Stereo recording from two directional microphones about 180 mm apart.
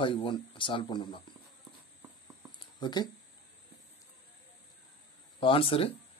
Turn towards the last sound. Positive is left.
turn(degrees=30)  # may be behind; listen again after turning